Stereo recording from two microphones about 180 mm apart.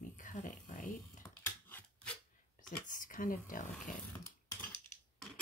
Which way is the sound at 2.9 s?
50° left (ahead or behind).